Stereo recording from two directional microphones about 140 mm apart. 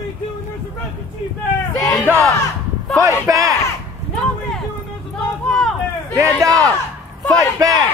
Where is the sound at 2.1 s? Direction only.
15° right (ahead or behind).